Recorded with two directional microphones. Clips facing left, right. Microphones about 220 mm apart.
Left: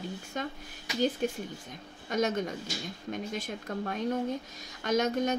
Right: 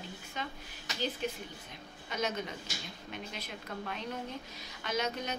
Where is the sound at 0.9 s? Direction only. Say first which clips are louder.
Left 9 dB; 15° left (ahead or behind).